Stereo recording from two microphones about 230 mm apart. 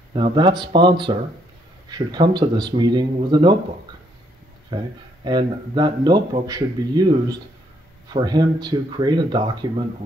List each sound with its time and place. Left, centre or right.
0.1 s speech: right
4.6 s speech: centre